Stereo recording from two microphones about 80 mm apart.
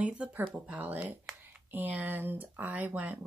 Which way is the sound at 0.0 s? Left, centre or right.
Centre.